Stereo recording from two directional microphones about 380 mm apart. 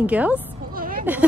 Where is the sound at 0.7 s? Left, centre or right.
Right.